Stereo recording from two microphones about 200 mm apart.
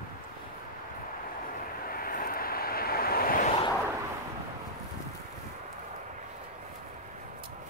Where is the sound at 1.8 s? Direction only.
45° left (ahead or behind).